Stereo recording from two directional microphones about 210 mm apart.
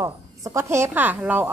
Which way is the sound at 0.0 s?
15° right (ahead or behind).